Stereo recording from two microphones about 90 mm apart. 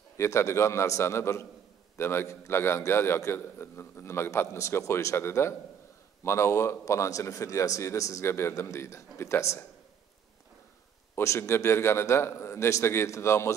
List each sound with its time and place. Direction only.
0.2 s a man's voice: 30° left (ahead or behind)
11.1 s a man's voice: 30° left (ahead or behind)